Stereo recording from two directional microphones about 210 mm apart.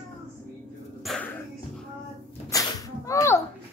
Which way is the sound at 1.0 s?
5° left (ahead or behind).